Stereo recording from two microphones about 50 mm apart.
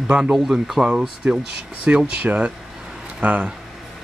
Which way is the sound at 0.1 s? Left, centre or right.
Centre.